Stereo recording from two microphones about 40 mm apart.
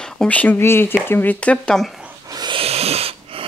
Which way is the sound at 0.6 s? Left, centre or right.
Left.